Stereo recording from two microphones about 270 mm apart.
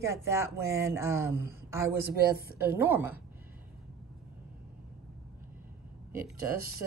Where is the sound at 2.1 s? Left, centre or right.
Right.